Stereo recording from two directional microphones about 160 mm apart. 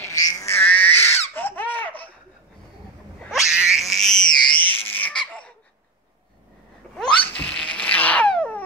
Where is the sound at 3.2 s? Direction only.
Centre (ahead or behind).